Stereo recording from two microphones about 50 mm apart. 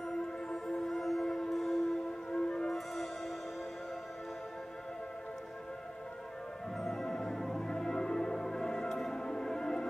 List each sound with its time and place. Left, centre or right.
0.8 s music: centre
2.3 s music: centre
2.9 s music: centre
6.8 s music: centre